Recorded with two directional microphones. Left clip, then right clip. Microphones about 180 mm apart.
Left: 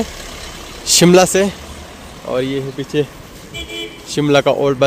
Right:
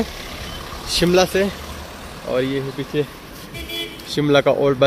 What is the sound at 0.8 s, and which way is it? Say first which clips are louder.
Speech: left 6 dB; 70° left (ahead or behind).